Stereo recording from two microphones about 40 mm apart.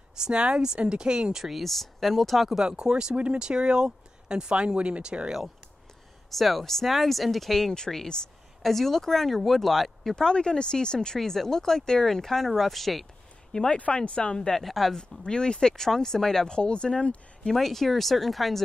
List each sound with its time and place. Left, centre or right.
0.2 s speech: right
1.4 s speech: centre
2.7 s speech: right
6.3 s speech: centre
10.1 s speech: centre
13.5 s speech: centre
14.6 s speech: centre
15.0 s speech: centre
17.5 s speech: centre